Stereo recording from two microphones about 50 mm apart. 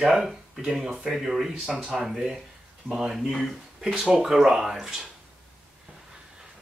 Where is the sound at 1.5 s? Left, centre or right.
Right.